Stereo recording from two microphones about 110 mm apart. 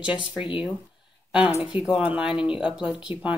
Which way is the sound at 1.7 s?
10° right (ahead or behind).